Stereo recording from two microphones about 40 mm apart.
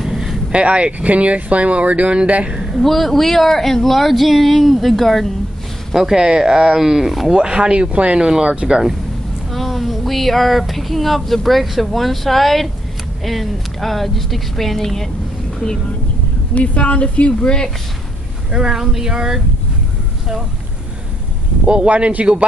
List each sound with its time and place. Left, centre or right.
0.0 s vehicle: centre
0.5 s speech: right
2.8 s speech: centre
6.1 s speech: centre
8.2 s speech: centre
9.5 s speech: centre
16.5 s speech: left
18.5 s speech: centre
21.6 s speech: right